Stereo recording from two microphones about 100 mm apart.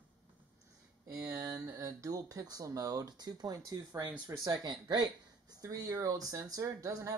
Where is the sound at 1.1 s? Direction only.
20° right (ahead or behind).